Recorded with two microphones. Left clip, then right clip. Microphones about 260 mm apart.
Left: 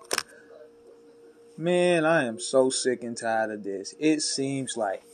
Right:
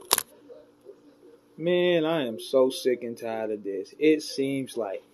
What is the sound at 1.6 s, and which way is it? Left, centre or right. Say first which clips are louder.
Speech: left 1 dB; left.